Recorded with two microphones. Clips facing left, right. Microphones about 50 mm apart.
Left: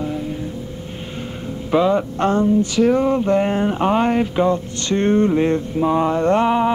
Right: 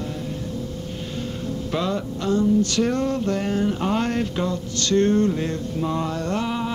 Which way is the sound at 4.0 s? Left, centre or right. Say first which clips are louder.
Left 6 dB; centre.